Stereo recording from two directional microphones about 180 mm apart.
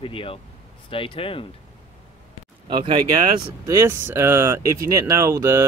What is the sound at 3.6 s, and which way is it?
Speech, 15° right (ahead or behind).